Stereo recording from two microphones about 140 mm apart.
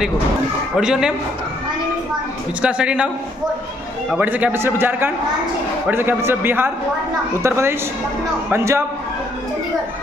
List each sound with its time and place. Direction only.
0.7 s a man's voice: 5° right (ahead or behind)
2.6 s a man's voice: 10° right (ahead or behind)
4.1 s a man's voice: 10° right (ahead or behind)